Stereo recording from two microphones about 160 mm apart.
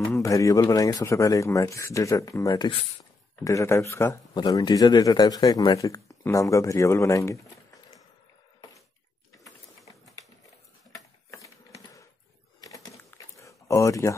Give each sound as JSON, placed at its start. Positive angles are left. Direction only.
{"t": 0.1, "sound": "speech", "side_deg": 20}
{"t": 11.2, "sound": "typewriter", "side_deg": 20}
{"t": 12.5, "sound": "a sound", "side_deg": 20}